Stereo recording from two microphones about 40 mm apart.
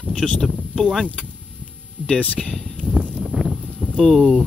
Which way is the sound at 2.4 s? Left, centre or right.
Centre.